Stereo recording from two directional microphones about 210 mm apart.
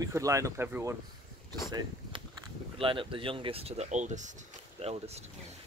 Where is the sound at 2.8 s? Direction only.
25° right (ahead or behind).